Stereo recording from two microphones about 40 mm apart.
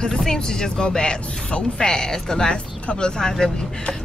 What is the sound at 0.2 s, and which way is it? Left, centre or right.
Speech, centre.